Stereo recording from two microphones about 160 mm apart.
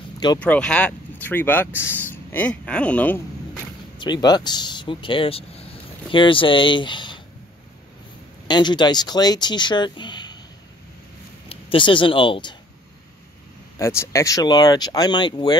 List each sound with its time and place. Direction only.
0.4 s speech: 5° left (ahead or behind)
4.0 s speech: 25° left (ahead or behind)
8.5 s speech: 25° left (ahead or behind)
11.4 s speech: 30° left (ahead or behind)
13.7 s speech: 20° left (ahead or behind)